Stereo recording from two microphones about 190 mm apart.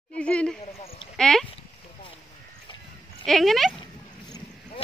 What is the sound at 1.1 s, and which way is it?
Speech, 5° left (ahead or behind).